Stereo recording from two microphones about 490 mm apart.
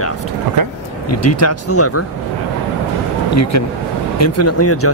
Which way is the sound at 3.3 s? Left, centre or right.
Left.